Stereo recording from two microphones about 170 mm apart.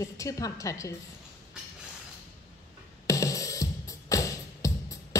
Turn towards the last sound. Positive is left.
turn(degrees=20)  # may be behind; listen again after turning